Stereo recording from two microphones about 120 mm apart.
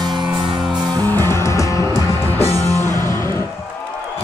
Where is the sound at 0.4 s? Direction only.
40° right (ahead or behind).